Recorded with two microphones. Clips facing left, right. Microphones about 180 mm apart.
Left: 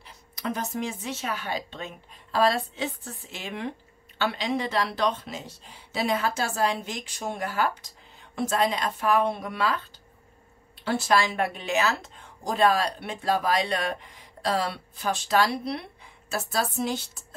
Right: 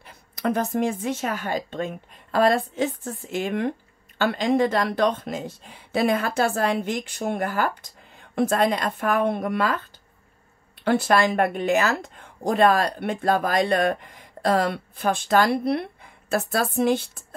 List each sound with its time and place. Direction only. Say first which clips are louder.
0.0 s speech: right 7 dB; 55° right (ahead or behind)